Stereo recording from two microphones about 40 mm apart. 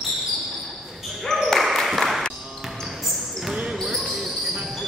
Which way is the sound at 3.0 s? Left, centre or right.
Centre.